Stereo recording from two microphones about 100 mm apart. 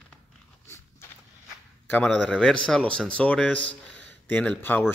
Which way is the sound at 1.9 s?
15° left (ahead or behind).